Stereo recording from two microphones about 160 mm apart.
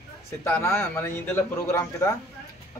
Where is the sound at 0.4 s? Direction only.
15° left (ahead or behind).